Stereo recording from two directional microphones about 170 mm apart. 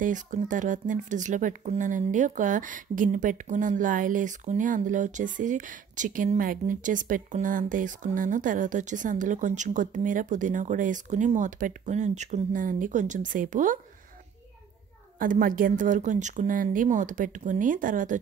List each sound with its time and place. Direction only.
0.0 s speech: 50° right (ahead or behind)
15.1 s speech: 55° right (ahead or behind)